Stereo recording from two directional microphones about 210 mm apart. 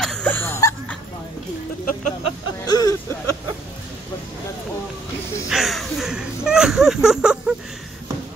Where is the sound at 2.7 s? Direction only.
20° left (ahead or behind).